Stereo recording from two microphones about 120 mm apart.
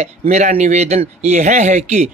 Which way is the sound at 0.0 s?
70° right (ahead or behind).